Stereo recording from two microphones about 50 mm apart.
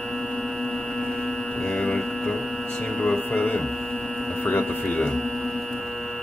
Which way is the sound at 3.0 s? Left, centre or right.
Left.